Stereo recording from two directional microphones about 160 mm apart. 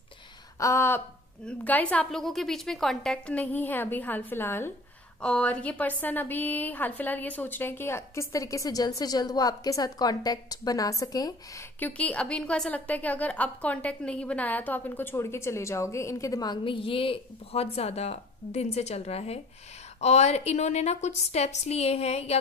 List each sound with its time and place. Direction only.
0.6 s a woman's voice: 20° left (ahead or behind)
11.8 s a woman's voice: 5° left (ahead or behind); by 22.4 s 40° left (ahead or behind)